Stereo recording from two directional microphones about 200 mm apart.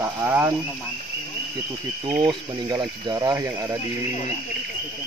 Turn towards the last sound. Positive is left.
turn(degrees=-15)  # may be behind; listen again after turning